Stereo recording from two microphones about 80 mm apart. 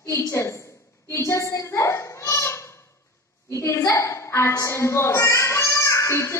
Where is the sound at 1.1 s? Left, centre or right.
Left.